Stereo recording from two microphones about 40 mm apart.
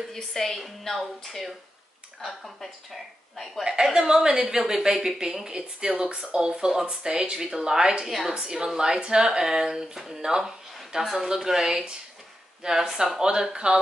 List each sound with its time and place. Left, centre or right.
0.1 s a woman's voice: centre
3.8 s a woman's voice: centre
6.7 s a woman's voice: centre
7.1 s a woman's voice: right
8.1 s a woman's voice: centre
8.4 s a woman's voice: centre